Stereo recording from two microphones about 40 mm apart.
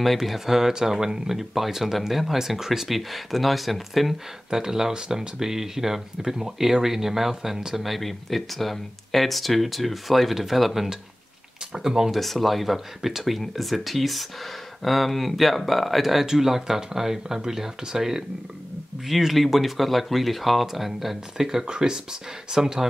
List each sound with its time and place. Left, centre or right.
0.0 s speech: centre
4.5 s speech: centre
11.7 s speech: centre
12.1 s speech: centre